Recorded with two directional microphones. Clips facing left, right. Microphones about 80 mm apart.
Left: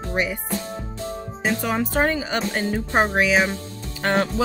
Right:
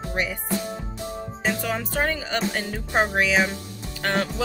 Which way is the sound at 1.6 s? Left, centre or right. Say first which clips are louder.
Left 7 dB; left.